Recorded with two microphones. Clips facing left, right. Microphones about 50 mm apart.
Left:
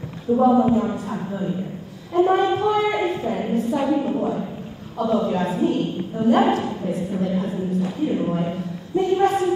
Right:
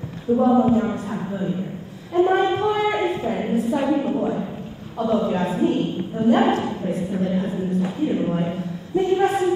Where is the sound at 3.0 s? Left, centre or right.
Centre.